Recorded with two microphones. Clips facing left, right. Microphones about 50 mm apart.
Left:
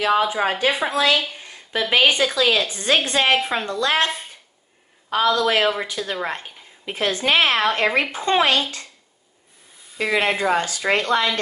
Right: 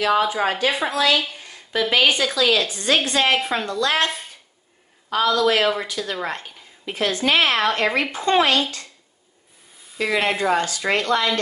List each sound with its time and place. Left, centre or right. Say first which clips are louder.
0.0 s speech: even; left
5.1 s speech: even; left
10.0 s speech: even; centre